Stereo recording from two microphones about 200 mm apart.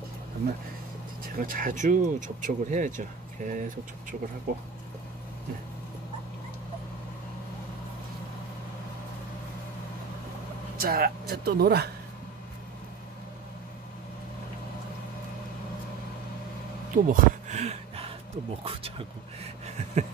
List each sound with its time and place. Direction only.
1.3 s speech: 45° right (ahead or behind)
10.8 s speech: 50° right (ahead or behind)
16.9 s a sound: 40° right (ahead or behind)
18.6 s speech: 30° right (ahead or behind)